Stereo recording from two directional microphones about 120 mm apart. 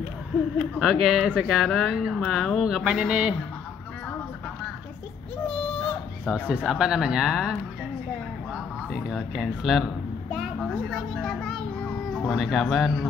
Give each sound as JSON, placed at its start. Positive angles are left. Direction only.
{"t": 0.7, "sound": "speech", "side_deg": -5}
{"t": 6.2, "sound": "speech", "side_deg": -10}
{"t": 8.9, "sound": "speech", "side_deg": 0}
{"t": 10.3, "sound": "a sound", "side_deg": 0}
{"t": 11.2, "sound": "children playing", "side_deg": 0}